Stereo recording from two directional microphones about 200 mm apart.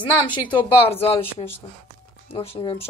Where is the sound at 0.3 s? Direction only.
25° left (ahead or behind).